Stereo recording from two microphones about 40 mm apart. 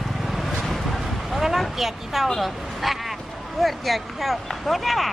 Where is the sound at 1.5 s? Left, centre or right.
Centre.